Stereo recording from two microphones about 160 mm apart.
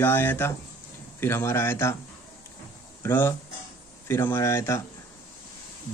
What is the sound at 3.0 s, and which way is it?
Speech, 15° left (ahead or behind).